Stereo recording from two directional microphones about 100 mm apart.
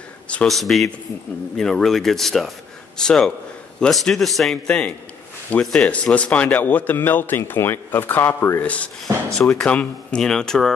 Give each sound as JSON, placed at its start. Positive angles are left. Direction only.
{"t": 0.3, "sound": "a man's voice", "side_deg": 5}